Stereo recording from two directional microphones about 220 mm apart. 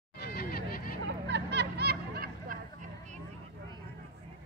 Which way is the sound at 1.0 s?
50° right (ahead or behind).